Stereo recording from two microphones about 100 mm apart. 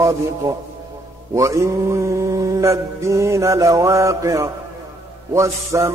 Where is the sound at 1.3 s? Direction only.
30° right (ahead or behind).